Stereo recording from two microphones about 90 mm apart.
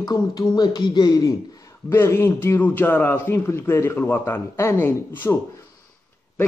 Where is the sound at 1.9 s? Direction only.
25° left (ahead or behind).